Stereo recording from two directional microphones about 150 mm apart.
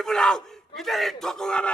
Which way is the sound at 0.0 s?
5° left (ahead or behind).